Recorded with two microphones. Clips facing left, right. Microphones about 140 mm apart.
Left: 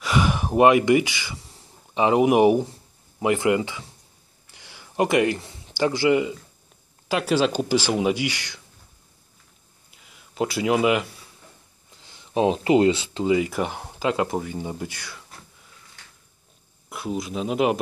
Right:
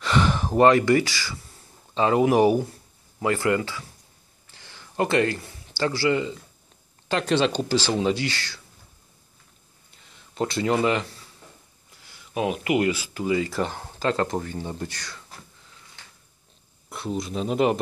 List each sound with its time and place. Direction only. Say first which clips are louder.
0.0 s gasp: even; 10° left (ahead or behind)
3.2 s speech: left 2 dB; 20° left (ahead or behind)
4.5 s a sound: left 1 dB; 15° left (ahead or behind)
7.1 s speech: left 1 dB; 5° left (ahead or behind)
9.8 s a sound: left 1 dB; 5° left (ahead or behind)
11.9 s speech: left 5 dB; 25° left (ahead or behind)
16.9 s speech: left 1 dB; 5° left (ahead or behind)